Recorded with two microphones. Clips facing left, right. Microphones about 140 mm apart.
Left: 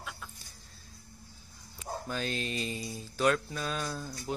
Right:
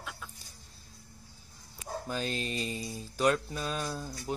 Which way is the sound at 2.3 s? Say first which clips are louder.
Even; 40° right (ahead or behind).